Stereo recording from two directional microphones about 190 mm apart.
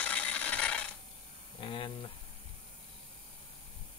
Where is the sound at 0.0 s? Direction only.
5° left (ahead or behind).